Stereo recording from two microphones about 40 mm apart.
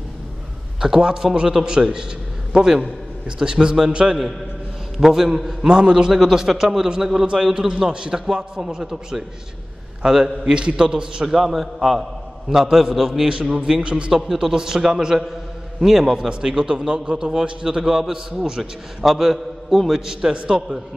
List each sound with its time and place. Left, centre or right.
0.7 s a man's voice: centre
5.1 s a man's voice: centre
11.2 s a man's voice: centre
13.3 s a man's voice: right
14.2 s a man's voice: centre
16.3 s a man's voice: right
19.0 s a man's voice: centre
19.9 s a man's voice: centre